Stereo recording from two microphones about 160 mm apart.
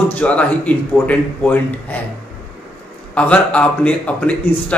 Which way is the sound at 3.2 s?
5° left (ahead or behind).